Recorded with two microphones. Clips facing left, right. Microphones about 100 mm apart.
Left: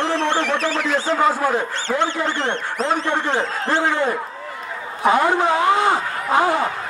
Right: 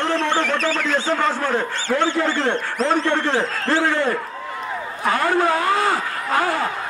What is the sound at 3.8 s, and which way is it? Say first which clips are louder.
Speech: even; 15° left (ahead or behind).